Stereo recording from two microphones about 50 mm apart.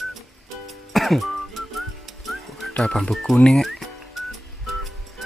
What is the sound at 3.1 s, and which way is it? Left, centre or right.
Speech, centre.